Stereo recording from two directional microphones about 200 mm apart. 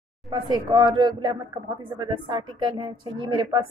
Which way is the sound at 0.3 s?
20° right (ahead or behind).